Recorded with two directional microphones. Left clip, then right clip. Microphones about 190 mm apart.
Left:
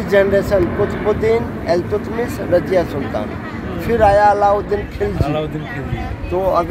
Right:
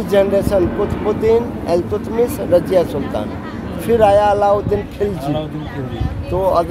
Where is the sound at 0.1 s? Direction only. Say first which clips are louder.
Left 1 dB; 25° right (ahead or behind).